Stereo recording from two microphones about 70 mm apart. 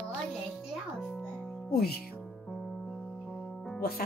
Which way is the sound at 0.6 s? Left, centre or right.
Centre.